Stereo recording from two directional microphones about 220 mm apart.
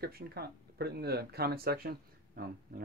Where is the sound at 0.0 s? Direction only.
45° right (ahead or behind).